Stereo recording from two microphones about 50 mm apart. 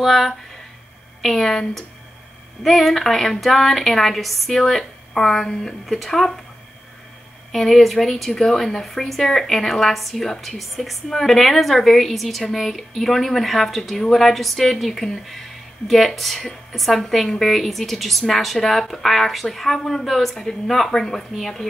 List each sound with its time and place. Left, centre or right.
0.0 s a woman's voice: centre
7.5 s a woman's voice: centre